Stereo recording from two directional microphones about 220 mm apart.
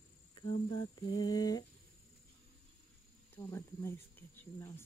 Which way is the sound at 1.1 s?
15° left (ahead or behind).